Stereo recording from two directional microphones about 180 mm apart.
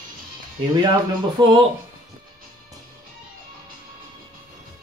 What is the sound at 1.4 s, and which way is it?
Speech, 25° right (ahead or behind).